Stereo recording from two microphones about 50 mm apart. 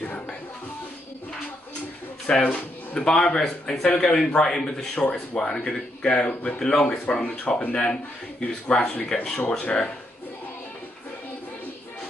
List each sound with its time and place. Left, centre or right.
0.0 s music: left
2.5 s speech: left
3.1 s a man's voice: centre
7.1 s speech: left